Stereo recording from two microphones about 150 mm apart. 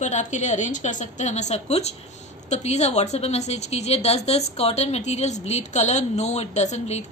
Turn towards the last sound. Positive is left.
turn(degrees=50)  # may be behind; listen again after turning